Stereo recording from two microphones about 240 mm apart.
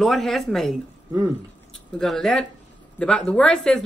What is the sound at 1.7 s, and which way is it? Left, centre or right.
Speech, centre.